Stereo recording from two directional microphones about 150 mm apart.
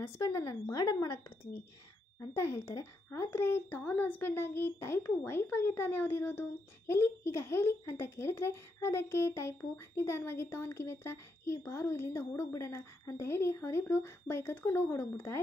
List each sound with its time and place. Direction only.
0.0 s speech: 20° left (ahead or behind)